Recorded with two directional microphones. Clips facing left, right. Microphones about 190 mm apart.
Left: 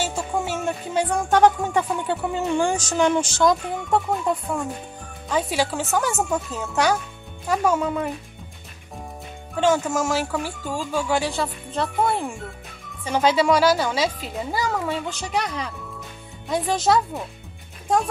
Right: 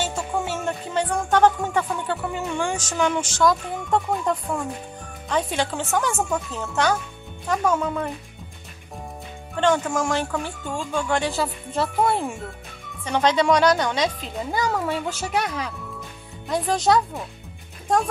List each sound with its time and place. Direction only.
0.0 s music: 10° left (ahead or behind)
2.5 s speech: 35° left (ahead or behind)
3.9 s speech: 5° left (ahead or behind)
9.6 s speech: 5° left (ahead or behind)